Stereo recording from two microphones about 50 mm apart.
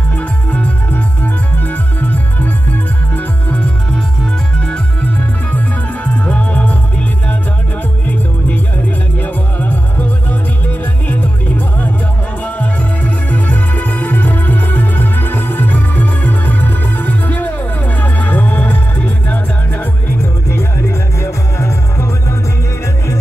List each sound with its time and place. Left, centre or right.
0.5 s music: left
6.2 s music: left
9.2 s music: left
11.1 s music: left
21.2 s music: left